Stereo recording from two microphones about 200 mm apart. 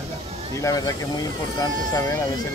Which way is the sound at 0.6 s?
15° left (ahead or behind).